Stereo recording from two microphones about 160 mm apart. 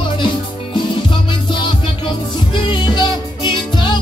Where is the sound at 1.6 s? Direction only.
30° left (ahead or behind).